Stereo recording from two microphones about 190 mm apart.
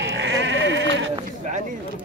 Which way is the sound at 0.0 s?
75° right (ahead or behind).